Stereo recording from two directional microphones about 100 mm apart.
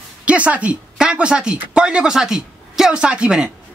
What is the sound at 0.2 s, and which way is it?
A man's voice, 15° right (ahead or behind).